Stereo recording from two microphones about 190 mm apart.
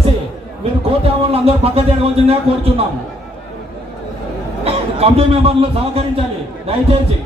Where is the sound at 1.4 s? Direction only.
30° right (ahead or behind).